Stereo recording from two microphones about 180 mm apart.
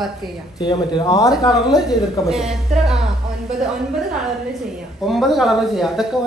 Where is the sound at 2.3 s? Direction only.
Centre (ahead or behind).